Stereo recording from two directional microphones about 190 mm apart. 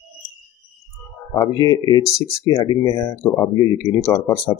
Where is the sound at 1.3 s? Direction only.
20° left (ahead or behind).